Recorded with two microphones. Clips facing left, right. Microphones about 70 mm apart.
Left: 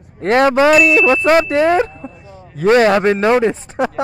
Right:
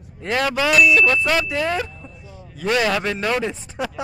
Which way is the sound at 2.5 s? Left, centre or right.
Left.